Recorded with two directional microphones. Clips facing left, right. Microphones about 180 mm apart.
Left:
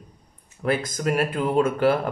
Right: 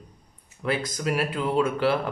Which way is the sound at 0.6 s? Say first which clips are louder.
Left 3 dB; 50° left (ahead or behind).